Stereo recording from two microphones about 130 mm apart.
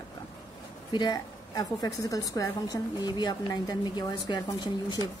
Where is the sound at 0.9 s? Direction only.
35° left (ahead or behind).